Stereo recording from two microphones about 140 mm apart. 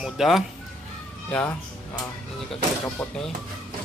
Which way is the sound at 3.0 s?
5° left (ahead or behind).